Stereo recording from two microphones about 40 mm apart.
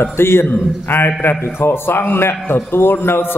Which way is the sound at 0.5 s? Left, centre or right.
Left.